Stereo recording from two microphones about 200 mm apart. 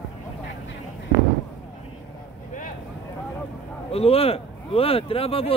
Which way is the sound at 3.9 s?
30° left (ahead or behind).